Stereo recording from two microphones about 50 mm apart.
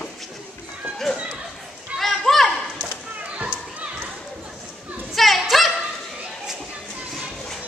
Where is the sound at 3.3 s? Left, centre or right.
Right.